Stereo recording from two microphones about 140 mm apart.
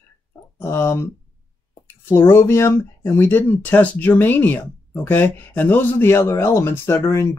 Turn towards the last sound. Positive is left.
turn(degrees=20)  # may be behind; listen again after turning